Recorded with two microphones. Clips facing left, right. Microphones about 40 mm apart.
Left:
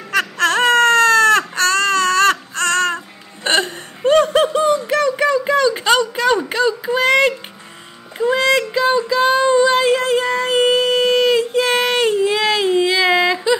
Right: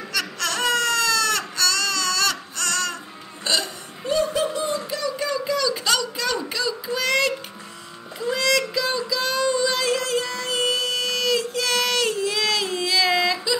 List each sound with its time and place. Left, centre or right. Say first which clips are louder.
0.1 s baby cry: left 10 dB; left
3.4 s hiccup: left 7 dB; left
8.2 s child singing: left 6 dB; left